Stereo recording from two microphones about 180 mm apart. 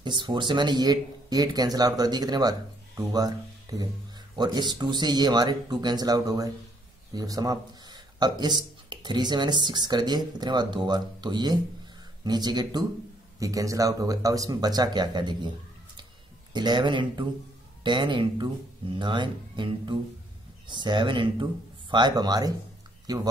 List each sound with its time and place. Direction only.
0.0 s speech: 25° right (ahead or behind)
16.5 s speech: 25° right (ahead or behind)